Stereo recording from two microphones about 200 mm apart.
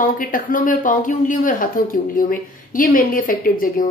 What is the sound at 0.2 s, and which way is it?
A woman's voice, 45° left (ahead or behind).